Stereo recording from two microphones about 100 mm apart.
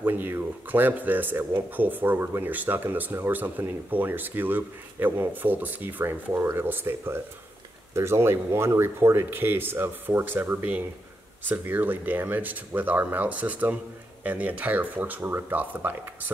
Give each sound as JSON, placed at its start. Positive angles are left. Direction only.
{"t": 0.0, "sound": "speech", "side_deg": -20}